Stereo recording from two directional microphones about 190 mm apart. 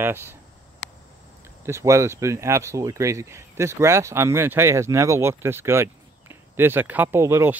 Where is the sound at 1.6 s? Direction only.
15° right (ahead or behind).